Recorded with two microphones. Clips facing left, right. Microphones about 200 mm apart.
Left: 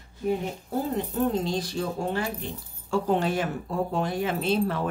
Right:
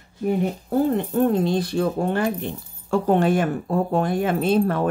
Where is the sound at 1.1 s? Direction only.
60° right (ahead or behind).